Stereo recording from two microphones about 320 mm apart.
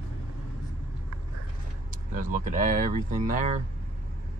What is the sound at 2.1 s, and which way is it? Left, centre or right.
Speech, right.